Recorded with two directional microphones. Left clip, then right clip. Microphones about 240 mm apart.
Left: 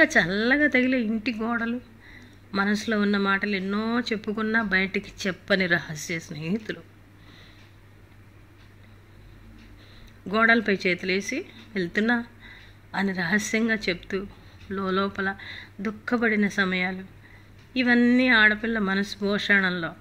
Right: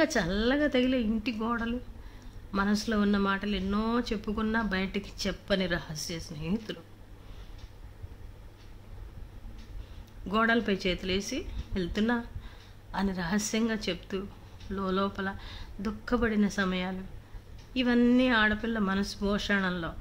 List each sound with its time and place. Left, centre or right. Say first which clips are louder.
0.0 s speech: left 7 dB; centre
10.2 s speech: left 6 dB; centre